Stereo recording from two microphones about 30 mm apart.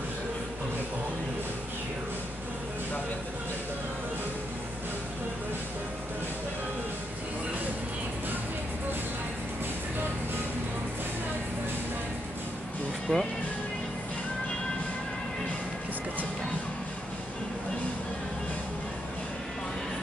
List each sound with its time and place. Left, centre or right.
13.1 s speech: left